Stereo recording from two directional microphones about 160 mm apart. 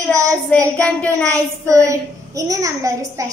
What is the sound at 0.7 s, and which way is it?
Speech, 10° left (ahead or behind).